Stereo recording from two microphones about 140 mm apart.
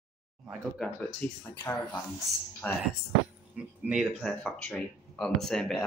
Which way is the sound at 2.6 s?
15° left (ahead or behind).